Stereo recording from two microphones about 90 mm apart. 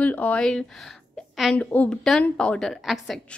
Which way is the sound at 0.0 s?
20° left (ahead or behind).